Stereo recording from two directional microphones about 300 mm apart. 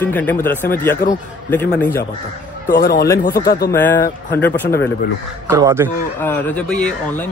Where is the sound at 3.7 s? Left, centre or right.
Centre.